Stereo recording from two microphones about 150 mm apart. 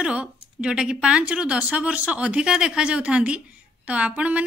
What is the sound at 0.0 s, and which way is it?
A woman's voice, 5° right (ahead or behind).